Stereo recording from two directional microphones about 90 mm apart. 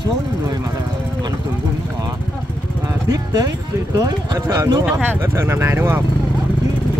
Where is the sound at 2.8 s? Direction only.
50° right (ahead or behind).